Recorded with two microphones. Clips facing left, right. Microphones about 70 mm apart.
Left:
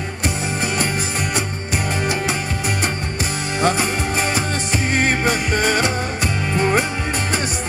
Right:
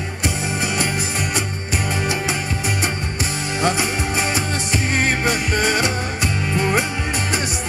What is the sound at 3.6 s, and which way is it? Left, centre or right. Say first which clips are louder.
Music: left 2 dB; left.